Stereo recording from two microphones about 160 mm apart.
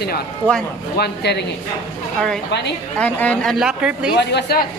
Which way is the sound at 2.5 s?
90° left.